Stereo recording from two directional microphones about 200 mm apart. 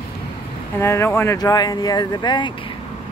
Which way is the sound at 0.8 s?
15° left (ahead or behind).